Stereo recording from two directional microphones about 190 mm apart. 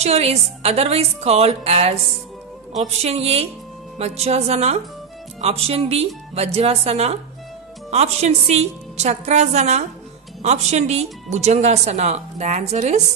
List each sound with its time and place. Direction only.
0.0 s speech: 35° right (ahead or behind)